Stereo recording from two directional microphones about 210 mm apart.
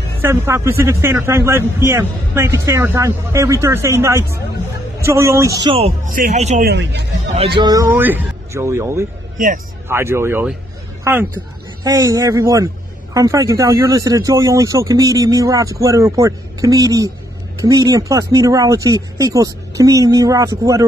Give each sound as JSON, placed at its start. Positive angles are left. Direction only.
{"t": 0.2, "sound": "a man's voice", "side_deg": -10}
{"t": 6.6, "sound": "speech", "side_deg": -55}
{"t": 7.3, "sound": "a man's voice", "side_deg": -25}
{"t": 11.8, "sound": "a man's voice", "side_deg": -15}